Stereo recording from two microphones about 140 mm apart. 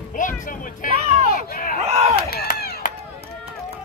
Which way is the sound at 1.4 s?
90° left.